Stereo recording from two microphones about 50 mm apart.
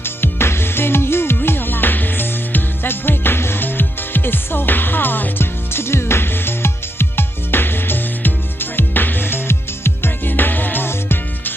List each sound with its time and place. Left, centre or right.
0.0 s music: left